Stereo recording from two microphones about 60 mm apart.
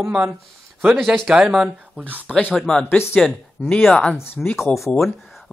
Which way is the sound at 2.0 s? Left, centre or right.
Right.